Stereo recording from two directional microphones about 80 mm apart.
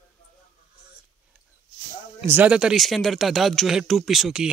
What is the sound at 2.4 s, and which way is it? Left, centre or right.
Speech, centre.